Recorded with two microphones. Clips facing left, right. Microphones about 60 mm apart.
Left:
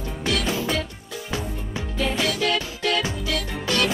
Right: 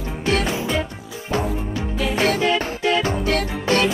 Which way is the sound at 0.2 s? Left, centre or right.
Right.